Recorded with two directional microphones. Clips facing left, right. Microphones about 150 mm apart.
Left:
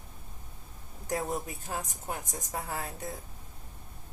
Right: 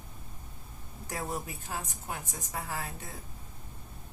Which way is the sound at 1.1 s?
40° left (ahead or behind).